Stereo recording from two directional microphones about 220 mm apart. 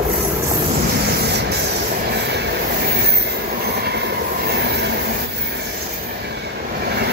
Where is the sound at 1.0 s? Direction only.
50° right (ahead or behind).